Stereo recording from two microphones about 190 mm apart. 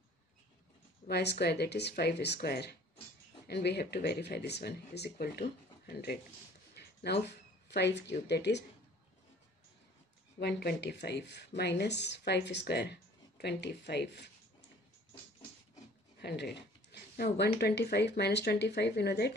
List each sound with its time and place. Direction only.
1.0 s speech: 60° left (ahead or behind)
6.7 s a sound: 60° left (ahead or behind)
7.7 s speech: 65° left (ahead or behind)
10.4 s speech: 60° left (ahead or behind)
16.2 s speech: 60° left (ahead or behind)